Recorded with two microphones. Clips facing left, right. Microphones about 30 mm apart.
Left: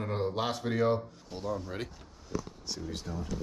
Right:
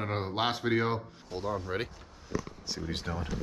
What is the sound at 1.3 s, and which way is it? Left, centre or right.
Speech, centre.